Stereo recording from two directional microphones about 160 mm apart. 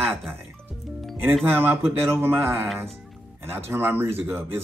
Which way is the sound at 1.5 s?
15° right (ahead or behind).